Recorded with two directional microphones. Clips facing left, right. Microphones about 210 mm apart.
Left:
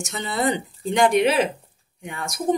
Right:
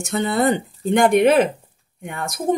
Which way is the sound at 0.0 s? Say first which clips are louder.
Right 5 dB; 55° right (ahead or behind).